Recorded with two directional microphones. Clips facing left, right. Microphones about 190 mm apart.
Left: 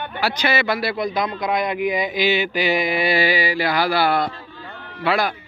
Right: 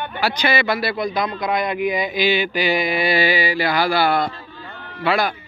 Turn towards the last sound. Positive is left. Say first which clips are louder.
# right 1 dB
turn(degrees=5)  # may be behind; listen again after turning